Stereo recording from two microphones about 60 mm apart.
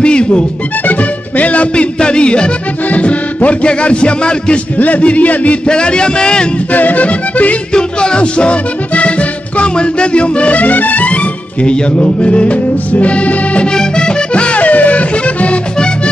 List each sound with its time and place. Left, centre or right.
0.0 s music: centre
6.7 s music: left